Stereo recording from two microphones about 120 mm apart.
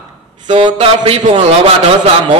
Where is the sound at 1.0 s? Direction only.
55° right (ahead or behind).